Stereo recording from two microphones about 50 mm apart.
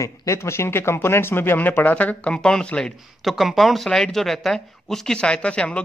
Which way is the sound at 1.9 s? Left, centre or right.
Left.